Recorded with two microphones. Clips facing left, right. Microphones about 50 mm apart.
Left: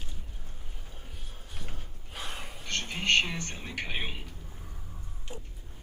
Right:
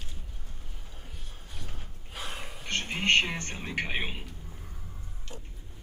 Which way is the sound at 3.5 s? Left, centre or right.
Right.